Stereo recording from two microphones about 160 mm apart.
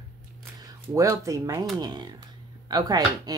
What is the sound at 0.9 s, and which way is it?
Speech, 20° right (ahead or behind).